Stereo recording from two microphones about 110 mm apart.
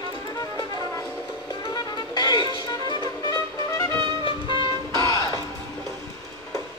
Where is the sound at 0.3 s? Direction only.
35° left (ahead or behind).